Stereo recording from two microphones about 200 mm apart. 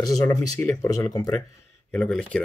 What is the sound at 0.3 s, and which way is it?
Speech, 15° left (ahead or behind).